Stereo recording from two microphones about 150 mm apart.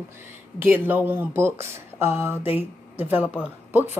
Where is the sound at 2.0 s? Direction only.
15° right (ahead or behind).